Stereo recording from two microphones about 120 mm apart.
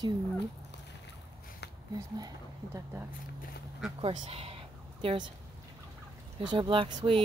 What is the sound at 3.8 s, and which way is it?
Speech, 5° right (ahead or behind).